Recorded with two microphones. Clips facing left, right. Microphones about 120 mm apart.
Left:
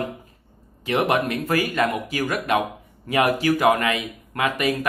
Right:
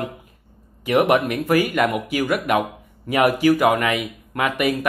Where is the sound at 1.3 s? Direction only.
15° right (ahead or behind).